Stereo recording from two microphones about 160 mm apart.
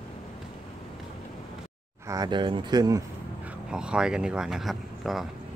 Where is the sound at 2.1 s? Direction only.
25° right (ahead or behind).